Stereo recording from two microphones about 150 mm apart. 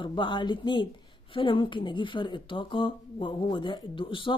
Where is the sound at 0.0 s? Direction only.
30° left (ahead or behind).